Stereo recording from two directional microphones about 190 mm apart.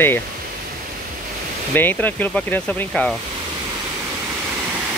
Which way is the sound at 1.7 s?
10° left (ahead or behind).